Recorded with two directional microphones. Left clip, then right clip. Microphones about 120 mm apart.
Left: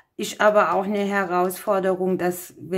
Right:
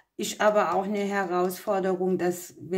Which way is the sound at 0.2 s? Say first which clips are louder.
Left 5 dB; 30° left (ahead or behind).